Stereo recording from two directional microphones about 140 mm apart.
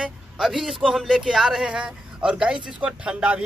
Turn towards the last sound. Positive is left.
turn(degrees=-10)  # may be behind; listen again after turning